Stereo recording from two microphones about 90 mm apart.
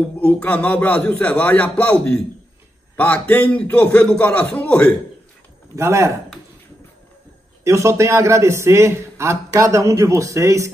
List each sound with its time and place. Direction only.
0.2 s a man's voice: 15° left (ahead or behind)
5.8 s a man's voice: 30° right (ahead or behind)
7.6 s a man's voice: 35° right (ahead or behind)